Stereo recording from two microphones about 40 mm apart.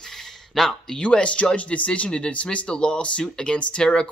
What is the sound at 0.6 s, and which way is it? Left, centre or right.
Speech, centre.